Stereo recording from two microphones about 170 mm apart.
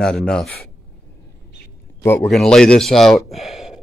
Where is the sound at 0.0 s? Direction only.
5° left (ahead or behind).